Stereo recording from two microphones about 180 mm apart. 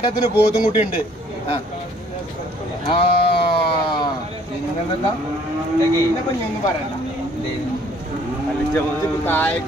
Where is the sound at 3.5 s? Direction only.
25° left (ahead or behind).